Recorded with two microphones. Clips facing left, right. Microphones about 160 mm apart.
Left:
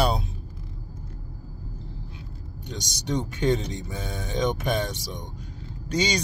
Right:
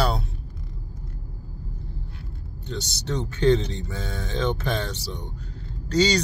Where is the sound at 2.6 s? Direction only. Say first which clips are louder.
Even; 15° left (ahead or behind).